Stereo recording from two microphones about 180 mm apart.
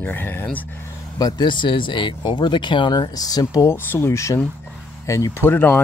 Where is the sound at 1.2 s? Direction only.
20° left (ahead or behind).